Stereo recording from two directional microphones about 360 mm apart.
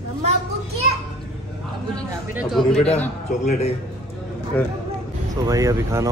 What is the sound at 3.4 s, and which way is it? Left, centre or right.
Speech, centre.